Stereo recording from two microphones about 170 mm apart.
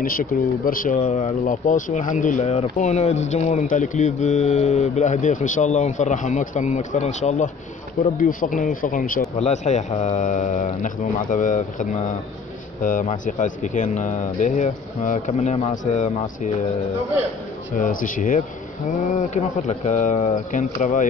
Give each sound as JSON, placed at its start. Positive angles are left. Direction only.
{"t": 0.0, "sound": "speech", "side_deg": 60}
{"t": 17.7, "sound": "speech", "side_deg": 50}